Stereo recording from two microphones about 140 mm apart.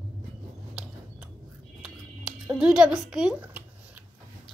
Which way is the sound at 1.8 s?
5° right (ahead or behind).